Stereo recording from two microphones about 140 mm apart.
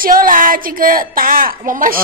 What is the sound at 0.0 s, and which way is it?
A woman's voice, 85° right.